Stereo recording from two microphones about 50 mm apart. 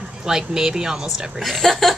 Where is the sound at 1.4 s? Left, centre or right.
Centre.